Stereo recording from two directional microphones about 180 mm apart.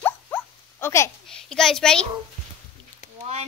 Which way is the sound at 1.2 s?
5° left (ahead or behind).